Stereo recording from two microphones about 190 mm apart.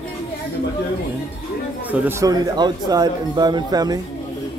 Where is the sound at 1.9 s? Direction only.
15° right (ahead or behind).